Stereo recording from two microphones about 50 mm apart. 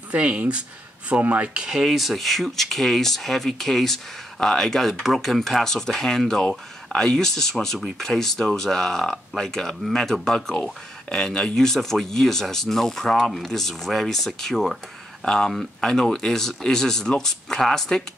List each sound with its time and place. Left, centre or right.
0.1 s speech: right
1.5 s speech: centre
1.9 s speech: centre